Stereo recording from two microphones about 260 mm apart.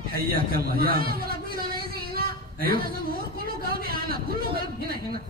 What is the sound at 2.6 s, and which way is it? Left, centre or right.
A man's voice, right.